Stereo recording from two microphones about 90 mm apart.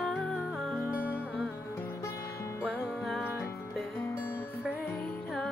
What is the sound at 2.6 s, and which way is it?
Music, centre (ahead or behind).